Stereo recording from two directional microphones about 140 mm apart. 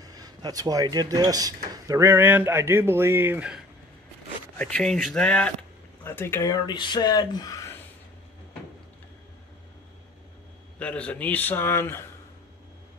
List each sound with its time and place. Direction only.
0.0 s speech: 30° right (ahead or behind); by 3.6 s 10° right (ahead or behind)
4.6 s a man's voice: 5° left (ahead or behind); by 7.7 s 25° left (ahead or behind)
10.8 s a man's voice: 10° left (ahead or behind)